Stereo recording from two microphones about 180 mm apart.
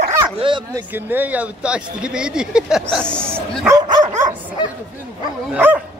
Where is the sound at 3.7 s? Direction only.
25° right (ahead or behind).